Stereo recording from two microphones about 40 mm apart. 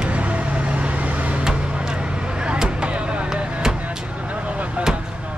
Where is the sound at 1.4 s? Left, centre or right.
Right.